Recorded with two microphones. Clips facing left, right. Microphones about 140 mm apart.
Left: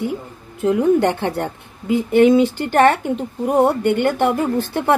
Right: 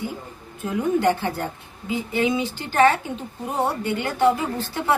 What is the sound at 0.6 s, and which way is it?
A woman's voice, 65° left (ahead or behind).